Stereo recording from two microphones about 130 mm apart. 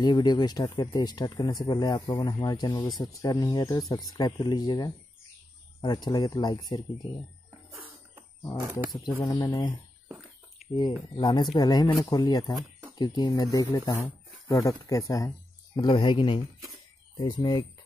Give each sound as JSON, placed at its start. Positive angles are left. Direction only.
{"t": 0.0, "sound": "speech", "side_deg": 35}
{"t": 9.2, "sound": "speech", "side_deg": 30}
{"t": 10.6, "sound": "a sound", "side_deg": 0}
{"t": 11.1, "sound": "speech", "side_deg": 35}